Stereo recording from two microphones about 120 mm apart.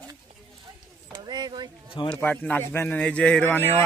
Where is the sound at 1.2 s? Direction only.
35° right (ahead or behind).